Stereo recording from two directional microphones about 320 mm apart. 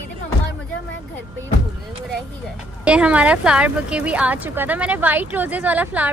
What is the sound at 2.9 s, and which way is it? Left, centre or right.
A woman's voice, centre.